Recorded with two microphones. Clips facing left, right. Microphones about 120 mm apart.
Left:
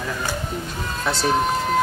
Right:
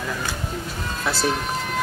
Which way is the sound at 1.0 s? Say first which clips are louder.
Left 1 dB; 5° right (ahead or behind).